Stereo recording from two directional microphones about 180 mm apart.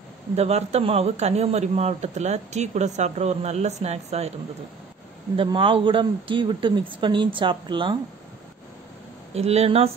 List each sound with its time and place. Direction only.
0.4 s speech: 35° right (ahead or behind)
5.3 s speech: 30° right (ahead or behind)
9.3 s speech: 35° right (ahead or behind)